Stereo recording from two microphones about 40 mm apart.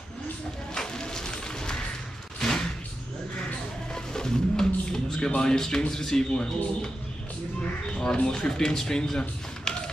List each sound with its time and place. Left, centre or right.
0.7 s music: centre
3.9 s vehicle: centre
5.4 s speech: centre
7.9 s speech: left
9.7 s tap: centre